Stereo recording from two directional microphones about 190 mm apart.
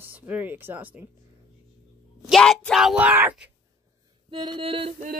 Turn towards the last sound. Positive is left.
turn(degrees=-30)  # may be behind; listen again after turning